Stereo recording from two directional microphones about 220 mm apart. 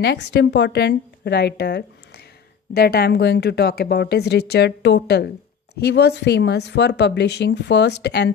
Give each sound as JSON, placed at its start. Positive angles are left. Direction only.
{"t": 0.0, "sound": "speech", "side_deg": 50}